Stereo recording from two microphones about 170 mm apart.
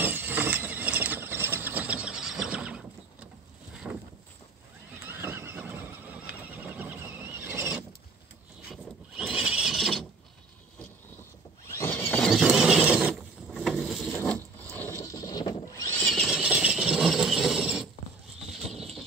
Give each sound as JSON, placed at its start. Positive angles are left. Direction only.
{"t": 0.0, "sound": "mechanisms", "side_deg": -10}
{"t": 3.9, "sound": "boat", "side_deg": -15}
{"t": 5.1, "sound": "horse", "side_deg": -15}
{"t": 6.5, "sound": "a sound", "side_deg": -10}
{"t": 11.6, "sound": "mechanisms", "side_deg": 15}
{"t": 14.2, "sound": "wood", "side_deg": 10}
{"t": 16.1, "sound": "mechanisms", "side_deg": 0}
{"t": 18.5, "sound": "bird", "side_deg": 0}